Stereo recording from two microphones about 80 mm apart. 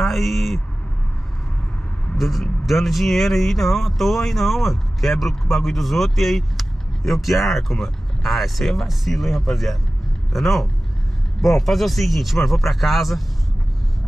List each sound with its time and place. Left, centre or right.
0.0 s speech: centre
2.1 s speech: centre